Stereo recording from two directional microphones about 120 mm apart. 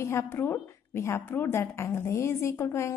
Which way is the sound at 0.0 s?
20° left (ahead or behind).